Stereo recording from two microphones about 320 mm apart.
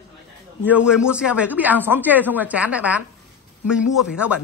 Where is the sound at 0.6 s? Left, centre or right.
Centre.